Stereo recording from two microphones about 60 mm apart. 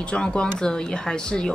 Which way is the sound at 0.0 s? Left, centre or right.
Centre.